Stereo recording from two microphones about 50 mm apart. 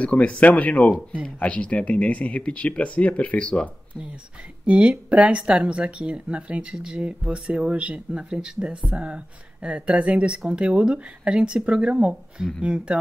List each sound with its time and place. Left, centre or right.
0.0 s speech: left
4.6 s speech: right